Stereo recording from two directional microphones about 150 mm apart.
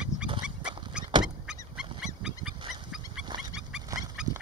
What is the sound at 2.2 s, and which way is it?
Dog, 5° right (ahead or behind).